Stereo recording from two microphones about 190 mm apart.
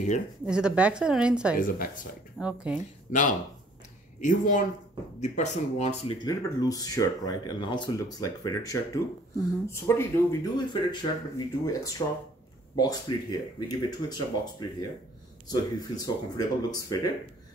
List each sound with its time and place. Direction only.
0.5 s a woman's voice: 5° right (ahead or behind)
3.1 s speech: 40° left (ahead or behind)
6.2 s speech: 20° left (ahead or behind)